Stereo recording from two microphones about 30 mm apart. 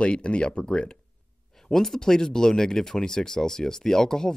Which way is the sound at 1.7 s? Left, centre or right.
Centre.